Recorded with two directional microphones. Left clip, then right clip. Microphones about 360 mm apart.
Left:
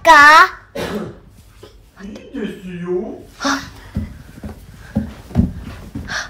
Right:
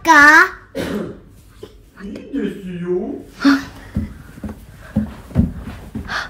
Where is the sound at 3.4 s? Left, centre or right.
Centre.